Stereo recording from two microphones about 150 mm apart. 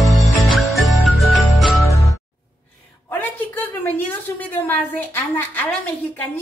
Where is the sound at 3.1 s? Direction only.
15° left (ahead or behind).